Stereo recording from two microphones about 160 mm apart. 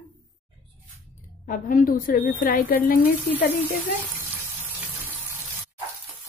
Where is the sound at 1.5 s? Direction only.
60° left (ahead or behind).